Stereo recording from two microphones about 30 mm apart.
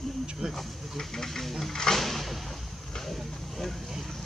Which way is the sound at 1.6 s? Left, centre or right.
Centre.